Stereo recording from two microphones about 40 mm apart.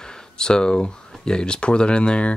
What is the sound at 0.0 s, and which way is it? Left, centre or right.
Speech, centre.